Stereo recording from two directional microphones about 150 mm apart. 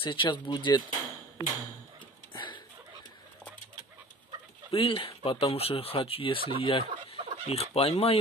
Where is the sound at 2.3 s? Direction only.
30° left (ahead or behind).